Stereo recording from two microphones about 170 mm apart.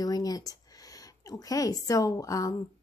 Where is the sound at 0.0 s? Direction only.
20° left (ahead or behind).